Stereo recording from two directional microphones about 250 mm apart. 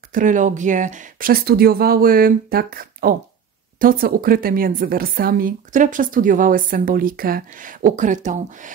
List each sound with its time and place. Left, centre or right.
0.1 s speech: right